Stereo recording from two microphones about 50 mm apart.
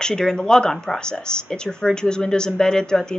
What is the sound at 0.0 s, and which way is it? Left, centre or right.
Speech, centre.